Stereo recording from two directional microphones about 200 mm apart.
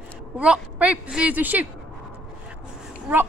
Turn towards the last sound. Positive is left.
turn(degrees=-10)  # may be behind; listen again after turning